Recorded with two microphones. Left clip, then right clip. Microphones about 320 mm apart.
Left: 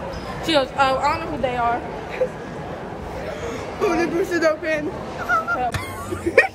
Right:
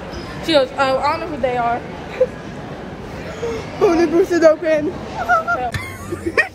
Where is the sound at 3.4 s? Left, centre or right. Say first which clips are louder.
Right 7 dB; centre.